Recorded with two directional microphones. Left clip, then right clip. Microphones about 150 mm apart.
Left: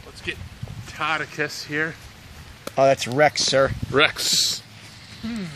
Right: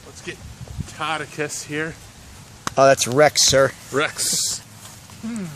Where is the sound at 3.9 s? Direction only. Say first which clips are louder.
Left 7 dB; 30° left (ahead or behind).